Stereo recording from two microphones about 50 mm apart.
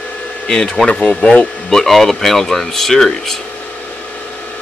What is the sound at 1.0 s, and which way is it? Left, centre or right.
Speech, left.